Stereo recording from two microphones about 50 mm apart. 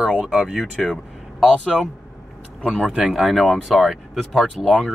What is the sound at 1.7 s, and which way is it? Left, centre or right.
Speech, centre.